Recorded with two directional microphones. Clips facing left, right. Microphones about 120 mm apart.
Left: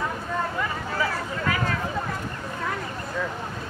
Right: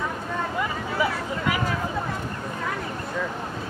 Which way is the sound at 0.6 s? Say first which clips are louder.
Right 2 dB; 15° right (ahead or behind).